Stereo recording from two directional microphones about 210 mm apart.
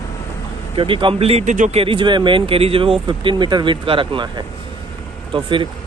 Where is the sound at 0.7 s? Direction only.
25° right (ahead or behind).